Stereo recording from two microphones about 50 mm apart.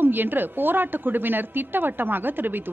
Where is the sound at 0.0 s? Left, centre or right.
Right.